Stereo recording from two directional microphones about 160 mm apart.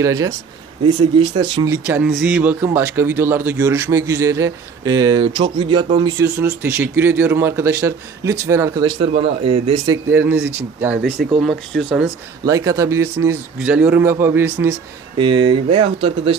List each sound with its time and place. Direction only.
0.0 s a man's voice: 20° right (ahead or behind)
0.8 s a man's voice: 30° right (ahead or behind)
1.7 s a man's voice: 10° right (ahead or behind); by 6.1 s 30° right (ahead or behind)
6.1 s speech: 20° right (ahead or behind)
9.2 s speech: 35° right (ahead or behind)
9.8 s speech: 15° right (ahead or behind)
12.4 s speech: 20° right (ahead or behind)
15.1 s speech: 30° right (ahead or behind)